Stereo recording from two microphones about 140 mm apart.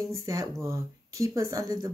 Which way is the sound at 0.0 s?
25° right (ahead or behind).